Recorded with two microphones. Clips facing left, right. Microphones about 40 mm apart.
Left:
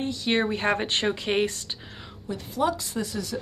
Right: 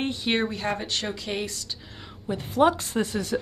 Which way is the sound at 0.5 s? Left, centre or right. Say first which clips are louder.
Left 4 dB; left.